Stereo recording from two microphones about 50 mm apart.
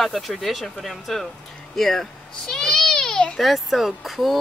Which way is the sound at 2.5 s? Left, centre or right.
Centre.